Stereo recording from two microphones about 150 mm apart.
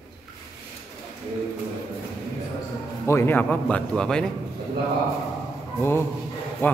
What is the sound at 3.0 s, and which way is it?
Speech, 15° left (ahead or behind).